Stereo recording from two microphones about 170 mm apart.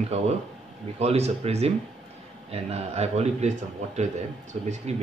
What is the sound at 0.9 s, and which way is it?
A man's voice, 40° right (ahead or behind).